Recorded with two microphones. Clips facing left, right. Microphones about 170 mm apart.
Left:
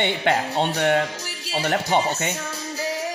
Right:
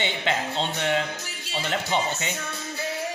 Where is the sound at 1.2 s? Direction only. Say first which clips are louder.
Left 6 dB; 35° left (ahead or behind).